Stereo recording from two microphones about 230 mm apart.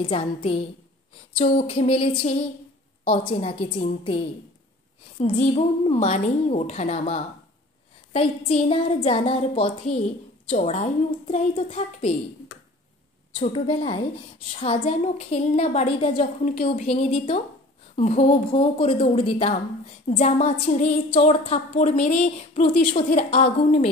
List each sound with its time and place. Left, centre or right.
0.0 s a woman's voice: left
1.7 s a woman's voice: left
5.2 s a woman's voice: left
13.4 s a woman's voice: left